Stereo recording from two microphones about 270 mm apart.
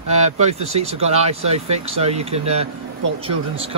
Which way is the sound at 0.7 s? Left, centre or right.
Right.